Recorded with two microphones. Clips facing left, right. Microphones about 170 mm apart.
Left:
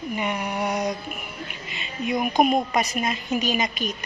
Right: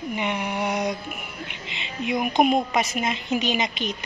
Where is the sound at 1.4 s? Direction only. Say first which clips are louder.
Even; 90° right.